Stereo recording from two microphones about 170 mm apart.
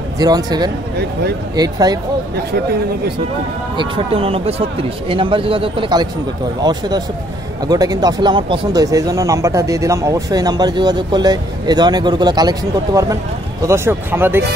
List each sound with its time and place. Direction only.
0.2 s speech: 25° right (ahead or behind)
3.7 s speech: 30° right (ahead or behind); by 14.4 s 10° right (ahead or behind)